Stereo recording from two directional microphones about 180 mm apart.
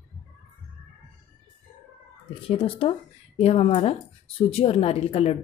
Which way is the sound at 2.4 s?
30° left (ahead or behind).